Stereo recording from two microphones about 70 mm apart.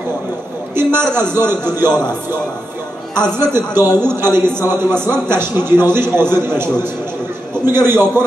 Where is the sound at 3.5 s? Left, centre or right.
Right.